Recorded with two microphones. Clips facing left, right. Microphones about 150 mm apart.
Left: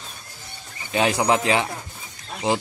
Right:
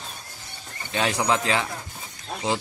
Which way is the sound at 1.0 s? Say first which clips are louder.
Left 4 dB; 30° left (ahead or behind).